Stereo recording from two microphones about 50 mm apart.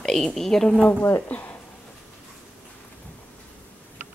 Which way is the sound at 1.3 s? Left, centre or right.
Left.